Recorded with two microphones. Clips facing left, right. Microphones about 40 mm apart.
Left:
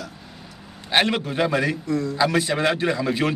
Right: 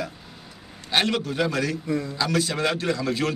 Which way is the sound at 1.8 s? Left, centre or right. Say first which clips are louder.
Left 3 dB; centre.